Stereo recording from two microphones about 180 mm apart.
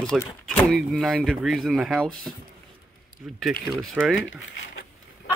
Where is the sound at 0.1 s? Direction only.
Centre (ahead or behind).